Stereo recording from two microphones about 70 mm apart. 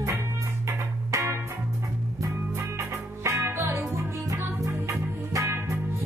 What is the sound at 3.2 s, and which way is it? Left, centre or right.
Music, right.